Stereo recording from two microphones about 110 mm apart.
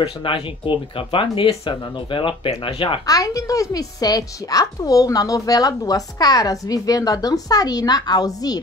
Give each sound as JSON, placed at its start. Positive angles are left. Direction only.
{"t": 0.0, "sound": "speech", "side_deg": 50}
{"t": 3.1, "sound": "a woman's voice", "side_deg": 35}